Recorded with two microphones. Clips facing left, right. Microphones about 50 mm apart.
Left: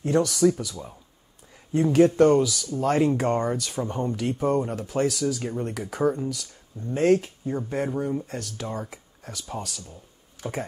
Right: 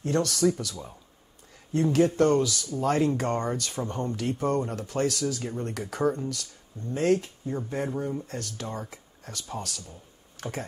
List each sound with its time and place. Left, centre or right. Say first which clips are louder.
0.0 s speech: left 4 dB; centre
2.2 s speech: left 4 dB; centre
6.9 s speech: left 4 dB; left
7.5 s speech: left 3 dB; centre
10.4 s speech: left 3 dB; right